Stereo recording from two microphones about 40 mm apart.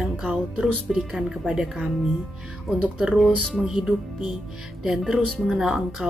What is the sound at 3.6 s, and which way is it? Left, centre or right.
Speech, centre.